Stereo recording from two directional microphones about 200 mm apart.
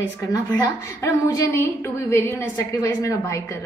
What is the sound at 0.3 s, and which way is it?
A woman's voice, 20° left (ahead or behind).